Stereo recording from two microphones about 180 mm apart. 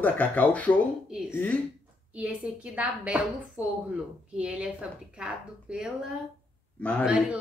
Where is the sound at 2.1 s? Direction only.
5° right (ahead or behind).